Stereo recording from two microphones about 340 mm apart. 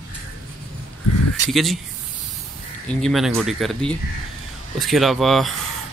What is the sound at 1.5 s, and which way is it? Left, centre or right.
Speech, centre.